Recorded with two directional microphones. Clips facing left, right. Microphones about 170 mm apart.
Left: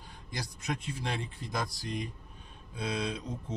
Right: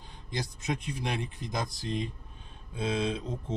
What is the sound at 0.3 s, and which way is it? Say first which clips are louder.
Speech: right 3 dB; 20° right (ahead or behind).